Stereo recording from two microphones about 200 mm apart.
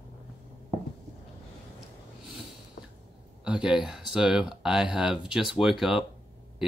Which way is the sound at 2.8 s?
60° left (ahead or behind).